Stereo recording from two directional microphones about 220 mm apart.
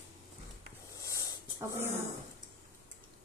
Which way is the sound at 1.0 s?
15° left (ahead or behind).